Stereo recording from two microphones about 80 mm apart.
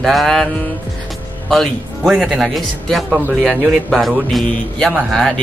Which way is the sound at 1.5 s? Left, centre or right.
Centre.